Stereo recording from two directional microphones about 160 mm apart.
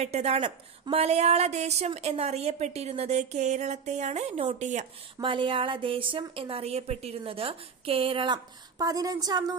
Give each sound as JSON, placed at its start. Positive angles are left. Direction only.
{"t": 0.0, "sound": "a woman's voice", "side_deg": -40}
{"t": 5.2, "sound": "speech", "side_deg": -30}